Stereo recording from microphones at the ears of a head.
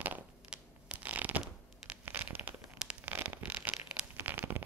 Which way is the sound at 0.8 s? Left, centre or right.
Right.